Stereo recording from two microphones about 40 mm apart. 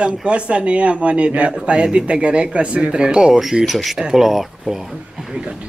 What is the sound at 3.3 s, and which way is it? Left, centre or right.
Speech, centre.